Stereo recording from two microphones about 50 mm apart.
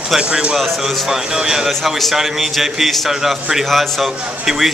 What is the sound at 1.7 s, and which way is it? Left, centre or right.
Speech, centre.